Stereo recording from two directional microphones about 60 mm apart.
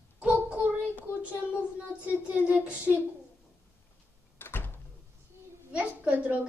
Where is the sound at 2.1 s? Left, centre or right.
Right.